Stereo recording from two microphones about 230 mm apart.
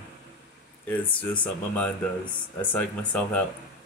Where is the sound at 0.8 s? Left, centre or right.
Centre.